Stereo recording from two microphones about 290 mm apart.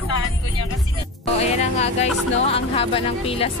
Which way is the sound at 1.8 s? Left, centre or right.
Left.